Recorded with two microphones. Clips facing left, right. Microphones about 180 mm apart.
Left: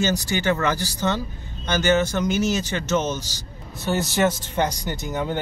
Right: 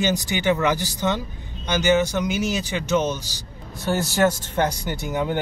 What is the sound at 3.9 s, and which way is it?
Speech, 10° left (ahead or behind).